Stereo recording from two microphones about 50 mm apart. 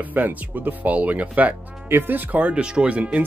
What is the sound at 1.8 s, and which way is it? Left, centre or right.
Speech, right.